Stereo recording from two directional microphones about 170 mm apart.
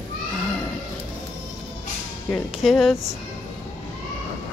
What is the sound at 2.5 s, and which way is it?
Speech, centre (ahead or behind).